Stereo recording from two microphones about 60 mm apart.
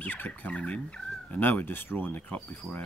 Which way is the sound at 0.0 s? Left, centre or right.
Left.